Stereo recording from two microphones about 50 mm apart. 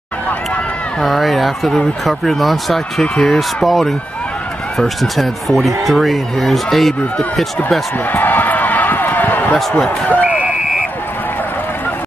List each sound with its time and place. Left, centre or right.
1.0 s speech: centre
3.0 s speech: centre
3.3 s speech: centre
8.1 s basketball bounce: left
9.6 s speech: centre